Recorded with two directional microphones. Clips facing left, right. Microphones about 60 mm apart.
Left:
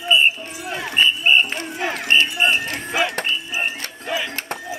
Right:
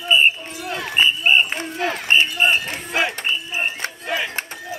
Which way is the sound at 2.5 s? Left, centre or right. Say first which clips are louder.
Even; right.